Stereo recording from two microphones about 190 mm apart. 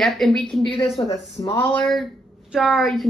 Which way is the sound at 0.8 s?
35° left (ahead or behind).